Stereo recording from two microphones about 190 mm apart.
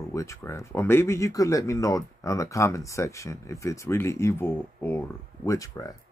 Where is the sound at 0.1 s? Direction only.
15° left (ahead or behind).